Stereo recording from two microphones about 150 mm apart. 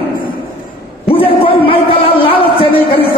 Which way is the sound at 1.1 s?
35° left (ahead or behind).